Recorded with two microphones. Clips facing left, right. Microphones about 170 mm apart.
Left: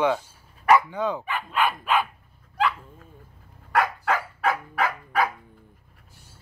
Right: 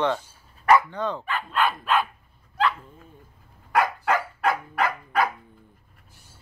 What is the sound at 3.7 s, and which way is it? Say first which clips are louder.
Dog: right 1 dB; centre (ahead or behind).